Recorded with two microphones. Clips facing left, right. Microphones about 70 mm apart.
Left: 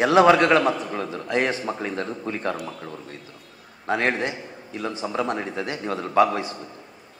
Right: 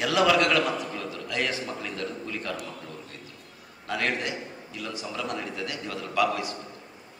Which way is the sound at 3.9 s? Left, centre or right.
Left.